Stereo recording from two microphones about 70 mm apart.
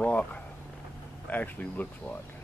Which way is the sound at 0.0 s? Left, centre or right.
Centre.